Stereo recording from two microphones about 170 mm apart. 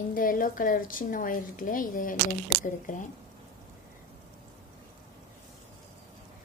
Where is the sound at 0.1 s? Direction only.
55° left (ahead or behind).